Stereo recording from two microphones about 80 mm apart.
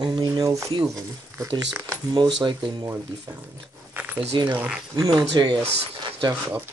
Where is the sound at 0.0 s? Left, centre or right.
Right.